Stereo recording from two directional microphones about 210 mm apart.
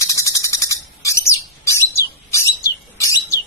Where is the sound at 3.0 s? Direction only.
15° left (ahead or behind).